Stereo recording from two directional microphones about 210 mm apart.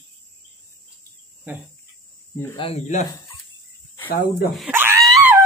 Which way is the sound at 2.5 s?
30° left (ahead or behind).